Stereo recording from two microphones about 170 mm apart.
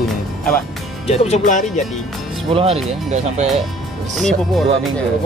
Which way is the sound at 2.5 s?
35° right (ahead or behind).